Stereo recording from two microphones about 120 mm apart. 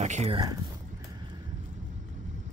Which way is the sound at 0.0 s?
75° right (ahead or behind).